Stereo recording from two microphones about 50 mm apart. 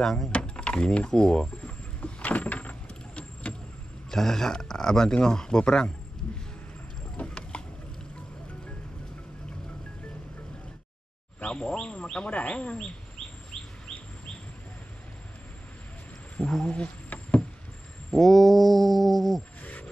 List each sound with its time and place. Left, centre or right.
0.0 s speech: centre
0.3 s speech: left
2.0 s vehicle: left
3.5 s vehicle: centre
4.1 s speech: centre
7.2 s a sound: left
11.4 s speech: left
16.3 s a sound: centre
18.1 s mantra: centre
19.6 s cricket: left